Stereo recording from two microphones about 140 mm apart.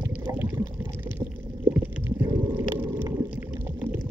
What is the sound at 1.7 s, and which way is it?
Stomach rumble, 20° right (ahead or behind).